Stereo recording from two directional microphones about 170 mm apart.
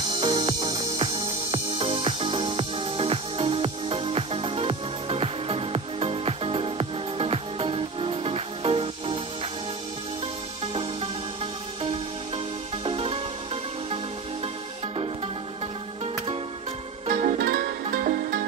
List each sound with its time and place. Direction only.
0.2 s music: 30° right (ahead or behind)
10.6 s music: 35° right (ahead or behind)
12.8 s music: 35° right (ahead or behind)
17.1 s music: 55° right (ahead or behind)